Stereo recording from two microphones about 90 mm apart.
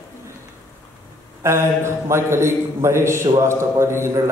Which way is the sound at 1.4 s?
30° right (ahead or behind).